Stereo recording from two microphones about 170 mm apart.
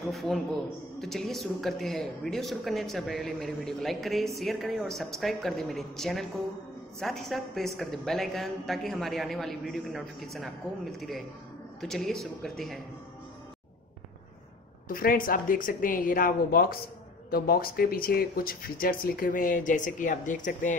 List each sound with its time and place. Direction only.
0.1 s speech: centre (ahead or behind)
14.9 s speech: 55° left (ahead or behind)